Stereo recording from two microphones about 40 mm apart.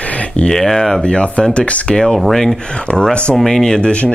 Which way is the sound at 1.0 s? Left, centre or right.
Left.